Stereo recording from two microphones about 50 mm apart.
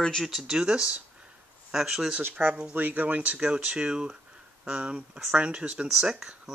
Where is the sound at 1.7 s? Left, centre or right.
Centre.